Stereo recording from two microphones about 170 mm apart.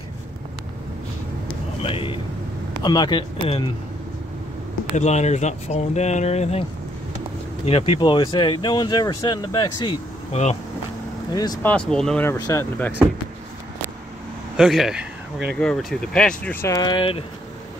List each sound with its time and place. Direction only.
1.8 s speech: 30° left (ahead or behind)
4.9 s speech: 40° left (ahead or behind)
7.6 s speech: 35° left (ahead or behind)
10.3 s speech: 40° left (ahead or behind)
11.3 s speech: 20° left (ahead or behind)
11.6 s speech: 5° left (ahead or behind)
12.3 s speech: 15° left (ahead or behind)
14.6 s speech: centre (ahead or behind)
16.6 s speech: 20° left (ahead or behind)